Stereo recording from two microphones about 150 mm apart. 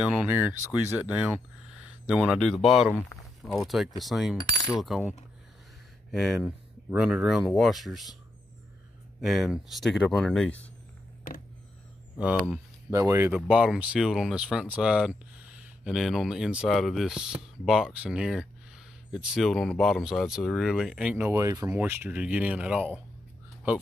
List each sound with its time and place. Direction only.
0.0 s speech: 10° right (ahead or behind)
6.1 s speech: centre (ahead or behind)
9.2 s speech: centre (ahead or behind)
12.2 s speech: 10° right (ahead or behind)
13.5 s speech: 5° right (ahead or behind)